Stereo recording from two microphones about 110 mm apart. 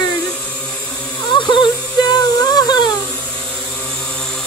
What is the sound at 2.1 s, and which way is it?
Child singing, 40° left (ahead or behind).